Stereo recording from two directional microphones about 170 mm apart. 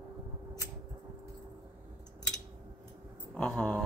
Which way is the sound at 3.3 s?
5° left (ahead or behind).